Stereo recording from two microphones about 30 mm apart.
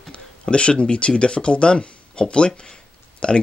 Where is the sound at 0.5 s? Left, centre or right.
Left.